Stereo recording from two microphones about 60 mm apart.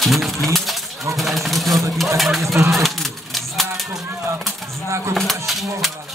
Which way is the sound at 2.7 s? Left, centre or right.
Centre.